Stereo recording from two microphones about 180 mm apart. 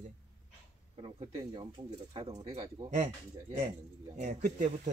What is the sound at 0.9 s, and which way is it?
Speech, 30° right (ahead or behind).